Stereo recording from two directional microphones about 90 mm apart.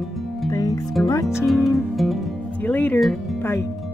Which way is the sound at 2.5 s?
20° left (ahead or behind).